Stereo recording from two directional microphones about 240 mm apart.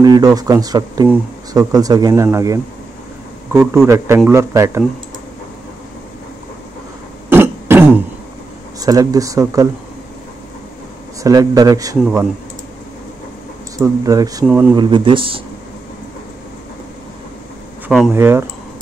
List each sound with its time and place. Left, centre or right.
0.0 s speech: centre
7.2 s throat clearing: centre
8.8 s speech: centre
11.2 s speech: centre
13.7 s speech: centre
14.8 s speech: centre
17.8 s speech: centre